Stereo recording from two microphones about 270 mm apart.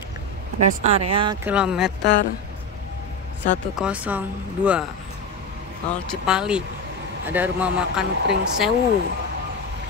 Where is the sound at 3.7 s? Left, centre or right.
Centre.